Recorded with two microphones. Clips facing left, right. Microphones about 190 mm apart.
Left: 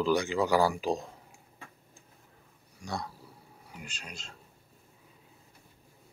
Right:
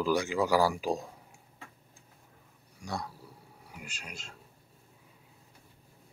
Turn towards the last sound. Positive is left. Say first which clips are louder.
# even
turn(degrees=-5)  # may be behind; listen again after turning